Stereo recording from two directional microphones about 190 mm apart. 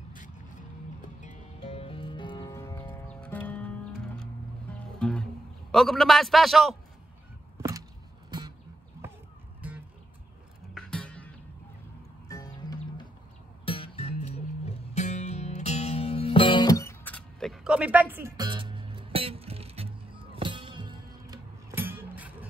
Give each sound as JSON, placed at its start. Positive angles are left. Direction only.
{"t": 1.2, "sound": "music", "side_deg": 35}
{"t": 4.7, "sound": "music", "side_deg": 5}
{"t": 8.3, "sound": "music", "side_deg": -25}
{"t": 10.7, "sound": "music", "side_deg": 5}
{"t": 12.3, "sound": "music", "side_deg": 20}
{"t": 13.7, "sound": "music", "side_deg": 30}
{"t": 18.3, "sound": "music", "side_deg": -25}